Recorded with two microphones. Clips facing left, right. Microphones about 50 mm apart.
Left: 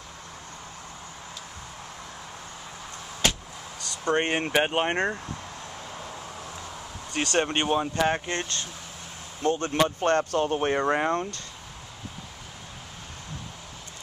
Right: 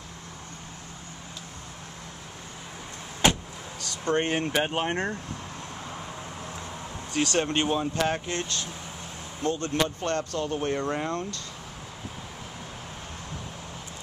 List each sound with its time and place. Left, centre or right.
3.2 s vehicle: centre
4.0 s speech: centre
7.2 s speech: left